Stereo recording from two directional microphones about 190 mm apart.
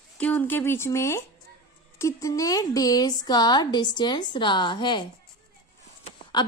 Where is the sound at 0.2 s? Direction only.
10° left (ahead or behind); by 5.0 s 25° left (ahead or behind).